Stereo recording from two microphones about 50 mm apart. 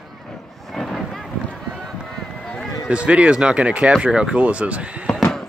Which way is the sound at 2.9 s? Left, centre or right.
Right.